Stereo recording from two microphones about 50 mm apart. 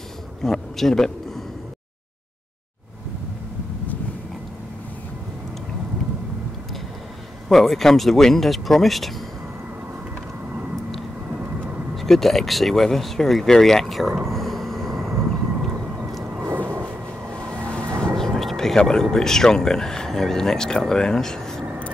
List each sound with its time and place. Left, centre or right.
0.4 s speech: centre
7.4 s speech: centre
11.2 s vehicle: right
11.9 s speech: centre
14.3 s a sound: centre
16.5 s a sound: right
17.6 s vehicle: centre
18.1 s speech: centre